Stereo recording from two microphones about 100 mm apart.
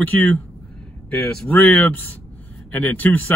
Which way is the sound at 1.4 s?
20° left (ahead or behind).